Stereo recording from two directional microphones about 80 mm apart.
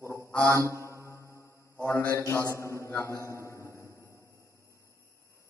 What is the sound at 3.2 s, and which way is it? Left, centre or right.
Music, left.